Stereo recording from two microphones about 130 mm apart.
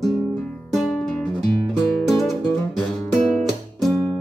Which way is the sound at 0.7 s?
5° left (ahead or behind).